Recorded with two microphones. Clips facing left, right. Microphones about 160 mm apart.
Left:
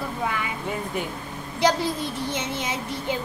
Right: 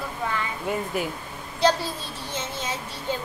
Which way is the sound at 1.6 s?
15° left (ahead or behind).